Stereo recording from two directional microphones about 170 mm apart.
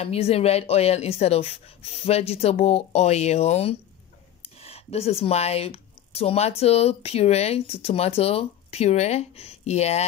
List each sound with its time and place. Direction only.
0.0 s speech: 35° left (ahead or behind)